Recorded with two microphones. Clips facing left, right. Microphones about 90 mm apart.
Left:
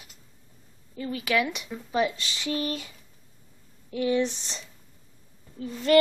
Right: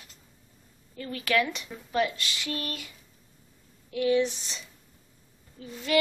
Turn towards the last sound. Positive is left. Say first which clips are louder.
# left 6 dB
turn(degrees=45)  # may be behind; listen again after turning